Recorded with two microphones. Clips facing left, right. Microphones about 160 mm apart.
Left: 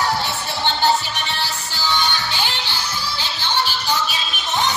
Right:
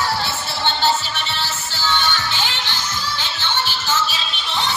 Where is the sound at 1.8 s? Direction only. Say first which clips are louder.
Even; 15° left (ahead or behind).